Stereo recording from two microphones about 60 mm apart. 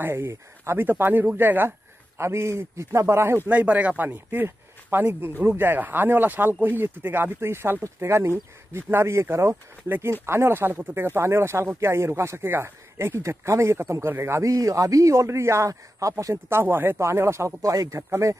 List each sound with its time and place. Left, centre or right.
0.0 s speech: right
2.1 s speech: right
3.4 s speech: right
14.5 s speech: right
15.1 s speech: right
15.7 s speech: right
16.4 s speech: right
17.0 s speech: right
17.6 s speech: right
18.1 s speech: right